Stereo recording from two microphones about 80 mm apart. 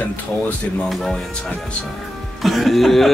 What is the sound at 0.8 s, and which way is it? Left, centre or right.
Speech, centre.